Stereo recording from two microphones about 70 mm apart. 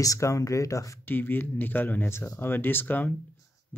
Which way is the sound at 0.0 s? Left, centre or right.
Left.